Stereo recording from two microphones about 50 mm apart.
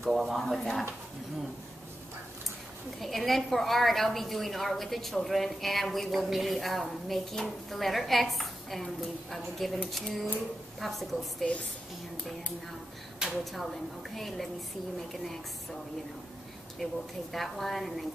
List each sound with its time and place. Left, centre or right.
0.1 s a woman's voice: centre
3.0 s a woman's voice: centre
13.4 s a woman's voice: centre
16.8 s a woman's voice: centre